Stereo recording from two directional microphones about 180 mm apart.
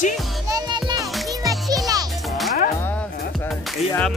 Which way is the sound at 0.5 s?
25° right (ahead or behind).